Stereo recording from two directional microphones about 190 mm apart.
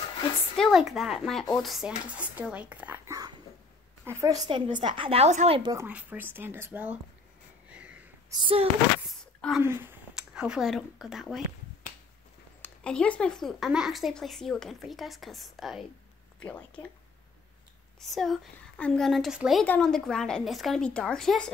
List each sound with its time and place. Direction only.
0.6 s a woman's voice: centre (ahead or behind); by 5.6 s 35° right (ahead or behind)
5.6 s a woman's voice: 15° right (ahead or behind)
7.7 s a sound: 5° right (ahead or behind)
8.3 s a woman's voice: 25° right (ahead or behind)
9.2 s a sound: 5° left (ahead or behind)
9.6 s speech: 10° right (ahead or behind)
12.6 s a woman's voice: 5° left (ahead or behind)
18.0 s a woman's voice: centre (ahead or behind)